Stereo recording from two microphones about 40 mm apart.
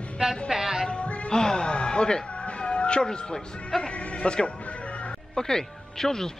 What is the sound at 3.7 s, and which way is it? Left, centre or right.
Speech, left.